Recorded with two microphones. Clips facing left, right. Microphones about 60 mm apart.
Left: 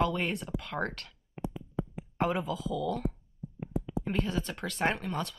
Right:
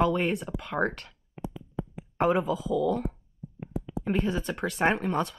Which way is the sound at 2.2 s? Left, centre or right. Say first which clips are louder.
Right 6 dB; centre.